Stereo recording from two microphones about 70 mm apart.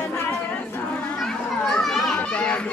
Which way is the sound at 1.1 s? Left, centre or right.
Centre.